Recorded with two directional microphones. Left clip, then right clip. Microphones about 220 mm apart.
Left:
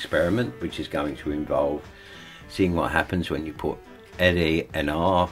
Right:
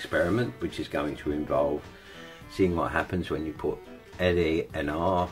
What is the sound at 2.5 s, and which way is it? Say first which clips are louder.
Speech: left 3 dB; 30° left (ahead or behind).